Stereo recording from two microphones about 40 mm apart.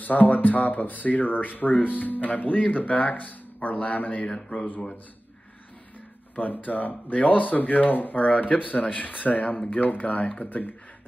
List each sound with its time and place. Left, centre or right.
0.0 s a man's voice: left
4.3 s speech: left
6.3 s speech: left